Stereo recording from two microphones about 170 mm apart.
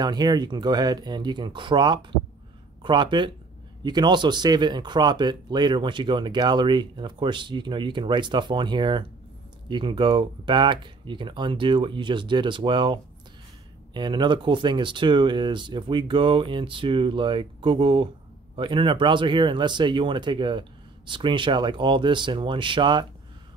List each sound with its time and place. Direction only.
0.0 s speech: 25° right (ahead or behind)